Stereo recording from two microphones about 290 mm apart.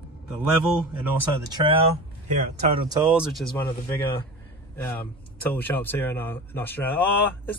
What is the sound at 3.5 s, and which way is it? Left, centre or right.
Speech, centre.